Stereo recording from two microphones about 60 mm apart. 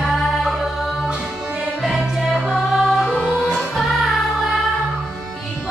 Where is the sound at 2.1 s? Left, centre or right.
Centre.